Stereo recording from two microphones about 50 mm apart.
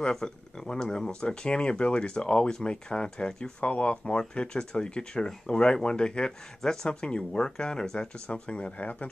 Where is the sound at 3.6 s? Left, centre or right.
Left.